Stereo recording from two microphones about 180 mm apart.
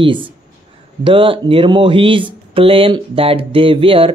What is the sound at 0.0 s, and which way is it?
Speech, 30° right (ahead or behind).